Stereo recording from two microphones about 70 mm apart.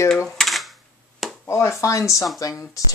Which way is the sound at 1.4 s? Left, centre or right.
Left.